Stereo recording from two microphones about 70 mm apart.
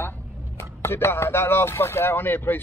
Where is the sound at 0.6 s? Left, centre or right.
Left.